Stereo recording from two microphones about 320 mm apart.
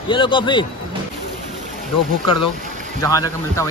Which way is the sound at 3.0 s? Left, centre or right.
Centre.